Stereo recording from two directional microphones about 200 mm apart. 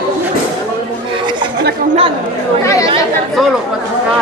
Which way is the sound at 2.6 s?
15° left (ahead or behind).